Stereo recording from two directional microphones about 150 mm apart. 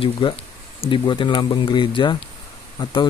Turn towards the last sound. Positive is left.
turn(degrees=30)  # may be behind; listen again after turning